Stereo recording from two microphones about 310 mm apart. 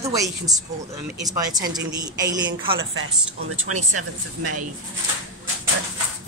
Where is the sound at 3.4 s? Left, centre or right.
Right.